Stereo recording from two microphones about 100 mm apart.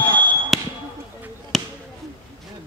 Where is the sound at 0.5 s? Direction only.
5° left (ahead or behind).